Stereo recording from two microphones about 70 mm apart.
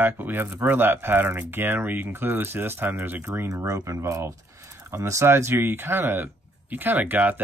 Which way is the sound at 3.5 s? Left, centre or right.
Right.